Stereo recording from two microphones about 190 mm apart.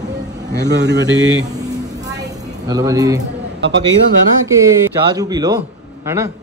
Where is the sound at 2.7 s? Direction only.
20° right (ahead or behind).